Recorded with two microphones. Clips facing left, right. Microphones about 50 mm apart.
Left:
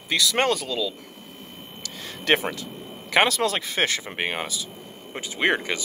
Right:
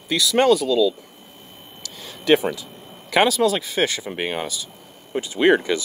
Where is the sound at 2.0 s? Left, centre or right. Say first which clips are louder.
Right 5 dB; left.